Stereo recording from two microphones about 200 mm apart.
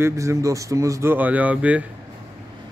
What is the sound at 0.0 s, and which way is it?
Speech, 15° right (ahead or behind).